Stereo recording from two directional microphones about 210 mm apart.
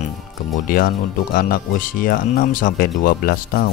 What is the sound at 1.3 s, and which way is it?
Speech, 45° left (ahead or behind).